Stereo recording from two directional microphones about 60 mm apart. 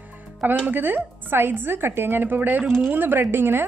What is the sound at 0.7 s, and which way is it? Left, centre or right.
A woman's voice, right.